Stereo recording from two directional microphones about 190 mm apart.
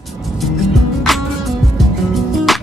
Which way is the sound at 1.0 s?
Centre (ahead or behind).